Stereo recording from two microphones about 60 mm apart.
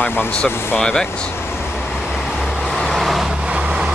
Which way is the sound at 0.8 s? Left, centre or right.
Centre.